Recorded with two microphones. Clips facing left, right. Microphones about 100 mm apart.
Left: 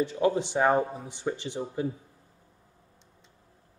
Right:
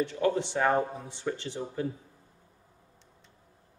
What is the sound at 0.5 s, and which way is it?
A man's voice, 15° left (ahead or behind).